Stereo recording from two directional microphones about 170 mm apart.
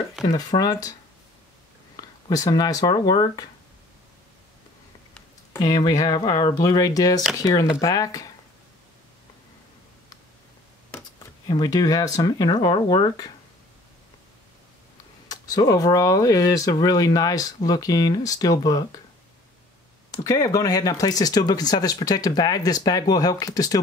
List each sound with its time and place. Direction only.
0.2 s speech: 25° left (ahead or behind)
2.0 s speech: 20° left (ahead or behind)
5.6 s speech: 25° left (ahead or behind)
11.4 s speech: 25° left (ahead or behind)
15.2 s speech: 20° left (ahead or behind)
20.2 s speech: 20° left (ahead or behind)